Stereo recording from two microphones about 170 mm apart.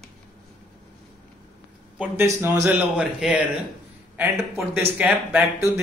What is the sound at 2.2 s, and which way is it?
A man's voice, 15° right (ahead or behind).